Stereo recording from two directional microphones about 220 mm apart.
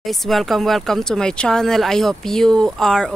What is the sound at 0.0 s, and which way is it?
Speech, centre (ahead or behind).